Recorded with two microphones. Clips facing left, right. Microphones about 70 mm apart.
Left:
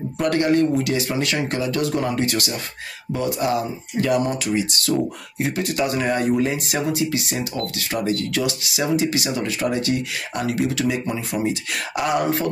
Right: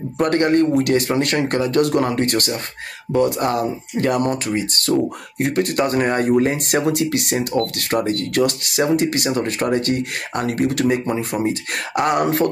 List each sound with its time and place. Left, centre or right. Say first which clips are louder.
0.2 s speech: right 2 dB; right